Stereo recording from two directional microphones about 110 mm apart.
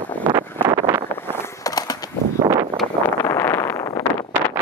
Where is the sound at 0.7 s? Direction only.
25° right (ahead or behind).